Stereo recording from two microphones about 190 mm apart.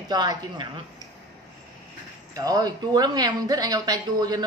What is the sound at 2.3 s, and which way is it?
Speech, 20° right (ahead or behind).